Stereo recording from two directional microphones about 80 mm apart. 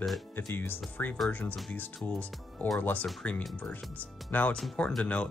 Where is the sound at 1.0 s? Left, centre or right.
Left.